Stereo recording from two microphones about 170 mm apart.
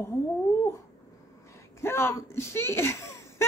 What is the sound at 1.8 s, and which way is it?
Speech, 15° left (ahead or behind).